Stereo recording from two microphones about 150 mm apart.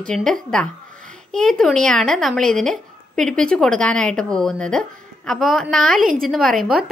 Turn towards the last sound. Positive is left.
turn(degrees=0)  # may be behind; listen again after turning